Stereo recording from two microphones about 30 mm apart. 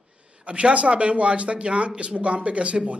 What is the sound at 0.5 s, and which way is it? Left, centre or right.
A woman's voice, right.